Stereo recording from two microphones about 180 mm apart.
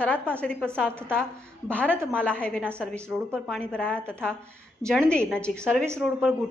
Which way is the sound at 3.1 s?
10° right (ahead or behind).